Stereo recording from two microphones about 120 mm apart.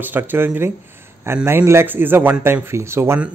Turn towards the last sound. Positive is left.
turn(degrees=-20)  # may be behind; listen again after turning